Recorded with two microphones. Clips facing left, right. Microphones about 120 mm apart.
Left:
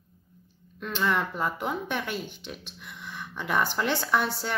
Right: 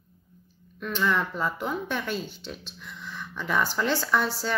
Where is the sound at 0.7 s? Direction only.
25° left (ahead or behind).